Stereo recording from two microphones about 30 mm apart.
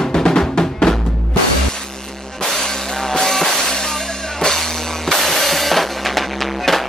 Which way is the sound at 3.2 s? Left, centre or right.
Centre.